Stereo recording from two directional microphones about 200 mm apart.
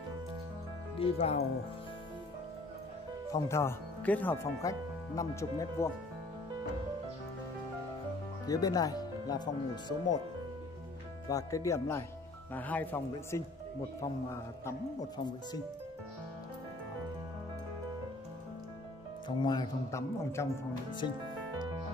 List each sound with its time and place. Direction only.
0.9 s speech: 30° left (ahead or behind)
3.4 s speech: 15° left (ahead or behind)
8.5 s speech: 20° left (ahead or behind)
11.2 s speech: 15° left (ahead or behind)
19.2 s speech: 20° left (ahead or behind)